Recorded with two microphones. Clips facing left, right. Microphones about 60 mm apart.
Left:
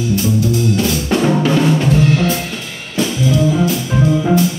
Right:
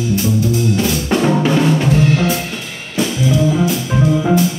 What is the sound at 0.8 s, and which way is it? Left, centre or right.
Drum kit, centre.